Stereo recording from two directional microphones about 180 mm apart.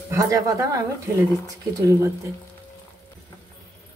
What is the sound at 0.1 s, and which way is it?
Speech, 20° right (ahead or behind).